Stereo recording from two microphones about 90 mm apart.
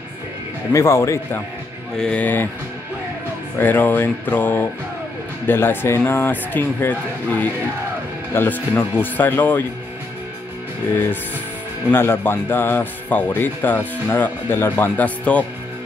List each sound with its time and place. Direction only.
0.7 s speech: 35° left (ahead or behind)
2.0 s speech: 15° left (ahead or behind)
3.5 s speech: 25° left (ahead or behind)
11.9 s speech: 25° left (ahead or behind)